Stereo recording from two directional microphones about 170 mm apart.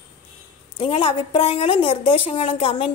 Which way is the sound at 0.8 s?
30° left (ahead or behind).